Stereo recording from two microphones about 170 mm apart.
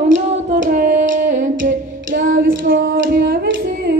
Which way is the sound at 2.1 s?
55° right (ahead or behind).